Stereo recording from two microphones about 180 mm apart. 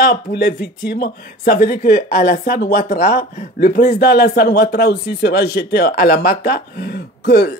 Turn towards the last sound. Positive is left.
turn(degrees=65)  # may be behind; listen again after turning